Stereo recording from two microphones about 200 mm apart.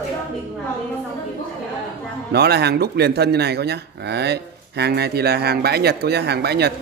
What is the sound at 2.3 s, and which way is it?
Speech, 55° right (ahead or behind).